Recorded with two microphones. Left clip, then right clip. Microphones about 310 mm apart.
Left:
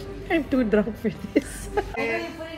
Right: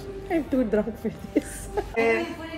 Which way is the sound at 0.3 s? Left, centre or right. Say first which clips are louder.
Left 2 dB; centre.